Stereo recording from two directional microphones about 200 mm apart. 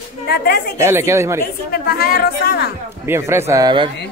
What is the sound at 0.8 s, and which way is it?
Speech, 15° right (ahead or behind).